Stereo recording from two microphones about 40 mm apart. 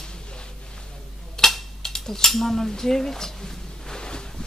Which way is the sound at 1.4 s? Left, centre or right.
Centre.